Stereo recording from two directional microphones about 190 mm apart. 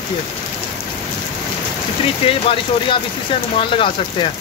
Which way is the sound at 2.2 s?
30° left (ahead or behind).